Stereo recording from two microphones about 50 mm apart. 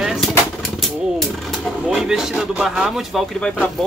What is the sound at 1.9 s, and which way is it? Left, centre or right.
Speech, centre.